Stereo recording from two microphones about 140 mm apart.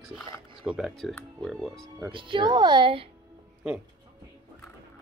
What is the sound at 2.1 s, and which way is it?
Speech, 35° right (ahead or behind).